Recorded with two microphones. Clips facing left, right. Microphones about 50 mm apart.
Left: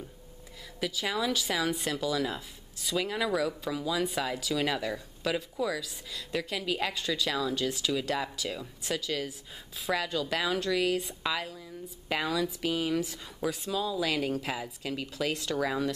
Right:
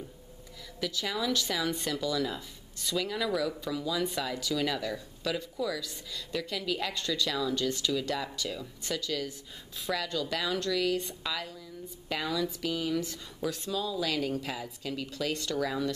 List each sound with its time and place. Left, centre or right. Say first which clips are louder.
0.7 s speech: left 2 dB; centre
12.7 s speech: left 2 dB; centre